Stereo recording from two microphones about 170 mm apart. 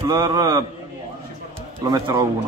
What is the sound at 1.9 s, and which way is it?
Speech, 25° right (ahead or behind).